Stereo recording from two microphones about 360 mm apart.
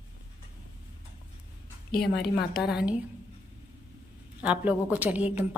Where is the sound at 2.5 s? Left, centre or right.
Centre.